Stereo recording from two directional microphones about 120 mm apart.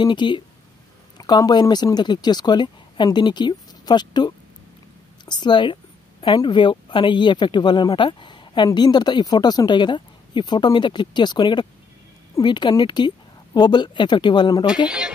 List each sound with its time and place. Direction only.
0.0 s a woman's voice: 40° left (ahead or behind)
14.9 s speech: 5° right (ahead or behind)